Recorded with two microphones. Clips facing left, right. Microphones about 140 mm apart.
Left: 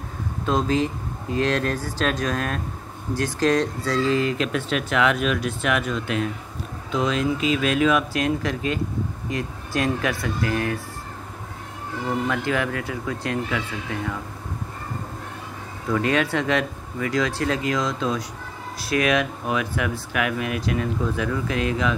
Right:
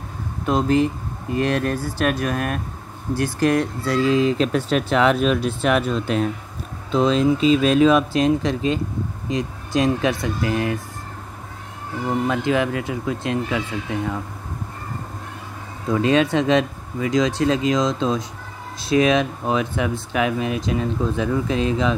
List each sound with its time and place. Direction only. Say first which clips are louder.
0.5 s speech: right 4 dB; 15° right (ahead or behind)
4.4 s speech: right 5 dB; 35° right (ahead or behind); by 10.8 s 20° right (ahead or behind)
12.3 s speech: right 4 dB; 20° right (ahead or behind)
15.9 s speech: right 4 dB; 20° right (ahead or behind)